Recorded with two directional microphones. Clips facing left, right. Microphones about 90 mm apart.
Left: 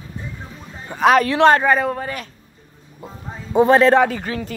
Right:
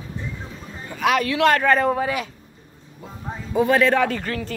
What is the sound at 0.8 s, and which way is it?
Speech, 35° left (ahead or behind).